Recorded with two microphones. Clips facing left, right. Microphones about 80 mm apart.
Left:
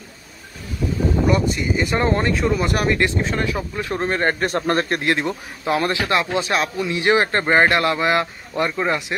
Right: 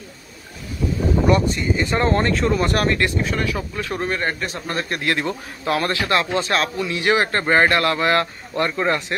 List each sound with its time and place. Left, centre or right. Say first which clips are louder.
1.2 s speech: right 2 dB; centre
3.0 s speech: left 1 dB; left
4.1 s speech: left 7 dB; left
4.5 s a man's voice: left 7 dB; left
4.8 s speech: left 2 dB; left; by 9.0 s centre